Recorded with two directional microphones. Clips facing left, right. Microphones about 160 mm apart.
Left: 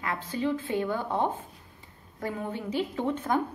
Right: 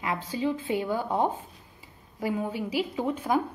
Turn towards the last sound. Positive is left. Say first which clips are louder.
# right 1 dB
turn(degrees=-10)  # may be behind; listen again after turning